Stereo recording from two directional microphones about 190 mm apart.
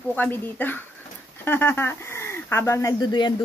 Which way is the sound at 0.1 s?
10° left (ahead or behind).